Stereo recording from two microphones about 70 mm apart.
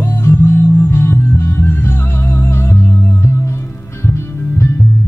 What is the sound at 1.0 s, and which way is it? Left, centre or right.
Music, left.